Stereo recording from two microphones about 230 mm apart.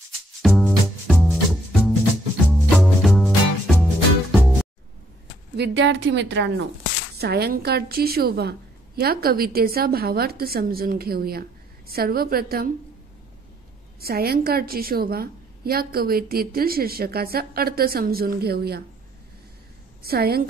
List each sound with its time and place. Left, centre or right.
0.4 s music: centre
5.6 s a woman's voice: right
14.0 s a woman's voice: right
20.0 s a woman's voice: right